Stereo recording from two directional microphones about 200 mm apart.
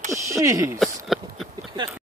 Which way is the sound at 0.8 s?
Centre (ahead or behind).